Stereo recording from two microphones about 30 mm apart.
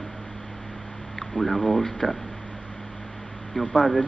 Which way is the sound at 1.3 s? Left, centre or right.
Centre.